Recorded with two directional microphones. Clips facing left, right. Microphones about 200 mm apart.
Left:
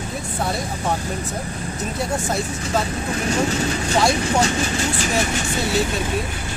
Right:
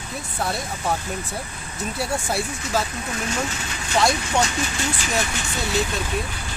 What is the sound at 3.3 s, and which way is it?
Speech, 35° left (ahead or behind).